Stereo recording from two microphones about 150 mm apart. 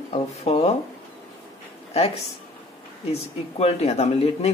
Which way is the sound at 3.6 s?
45° left (ahead or behind).